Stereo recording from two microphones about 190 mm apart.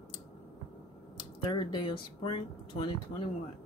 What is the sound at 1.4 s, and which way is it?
Speech, 25° left (ahead or behind).